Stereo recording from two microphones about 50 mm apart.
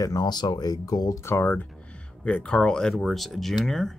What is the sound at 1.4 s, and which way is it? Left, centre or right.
Speech, left.